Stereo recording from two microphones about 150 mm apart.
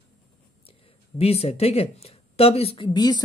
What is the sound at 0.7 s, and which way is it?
Speech, 45° left (ahead or behind).